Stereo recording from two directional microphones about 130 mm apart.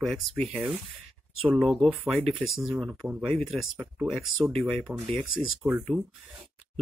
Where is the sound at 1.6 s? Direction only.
Centre (ahead or behind).